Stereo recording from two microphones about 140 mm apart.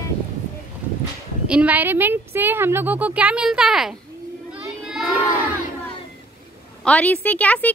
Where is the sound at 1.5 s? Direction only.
10° right (ahead or behind).